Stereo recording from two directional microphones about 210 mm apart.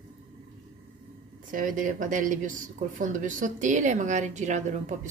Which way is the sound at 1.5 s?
40° right (ahead or behind).